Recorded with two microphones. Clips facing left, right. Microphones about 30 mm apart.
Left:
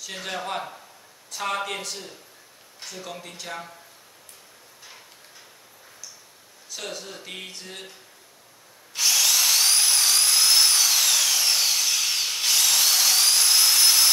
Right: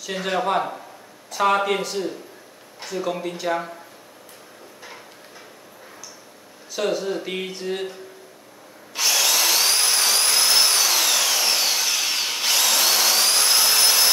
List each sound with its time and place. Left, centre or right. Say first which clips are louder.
0.0 s speech: right 8 dB; centre
6.7 s speech: right 12 dB; centre
8.9 s tools: right 2 dB; centre